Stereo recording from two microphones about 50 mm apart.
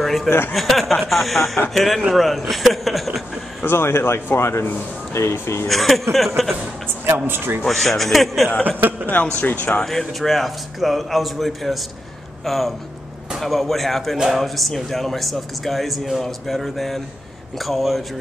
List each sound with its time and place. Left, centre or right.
0.0 s a sound: centre
0.5 s a man's voice: centre
3.6 s speech: left
5.7 s a man's voice: centre
7.2 s a man's voice: right
7.6 s a man's voice: centre
8.6 s speech: right
9.4 s speech: left
9.8 s a man's voice: centre
14.1 s speech: centre
14.4 s a man's voice: centre